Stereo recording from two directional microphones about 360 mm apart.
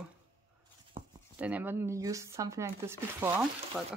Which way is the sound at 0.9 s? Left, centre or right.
Centre.